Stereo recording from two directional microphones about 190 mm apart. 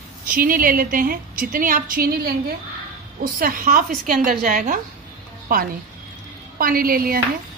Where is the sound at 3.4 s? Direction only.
45° right (ahead or behind).